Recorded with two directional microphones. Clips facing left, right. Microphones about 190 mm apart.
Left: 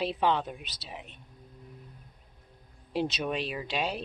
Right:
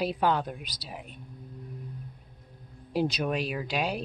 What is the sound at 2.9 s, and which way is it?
Speech, 5° right (ahead or behind).